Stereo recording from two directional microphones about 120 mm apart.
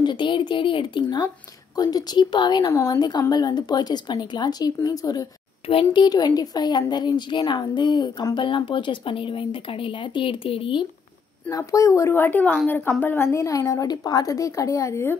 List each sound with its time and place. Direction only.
0.0 s speech: 40° left (ahead or behind)
1.8 s speech: 30° left (ahead or behind)
2.7 s a woman's voice: 25° left (ahead or behind)
3.0 s speech: 35° left (ahead or behind)
5.7 s speech: 50° left (ahead or behind)
6.0 s speech: 35° left (ahead or behind)
11.5 s a woman's voice: 25° left (ahead or behind)